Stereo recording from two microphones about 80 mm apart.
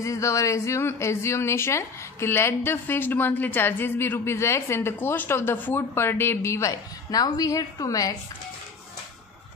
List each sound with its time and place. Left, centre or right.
0.0 s a woman's voice: left